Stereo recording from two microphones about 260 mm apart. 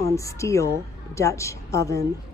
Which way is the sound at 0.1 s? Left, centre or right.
Centre.